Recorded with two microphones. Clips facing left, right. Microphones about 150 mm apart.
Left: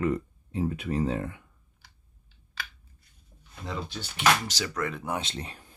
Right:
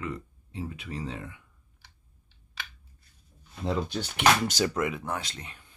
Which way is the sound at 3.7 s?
40° right (ahead or behind).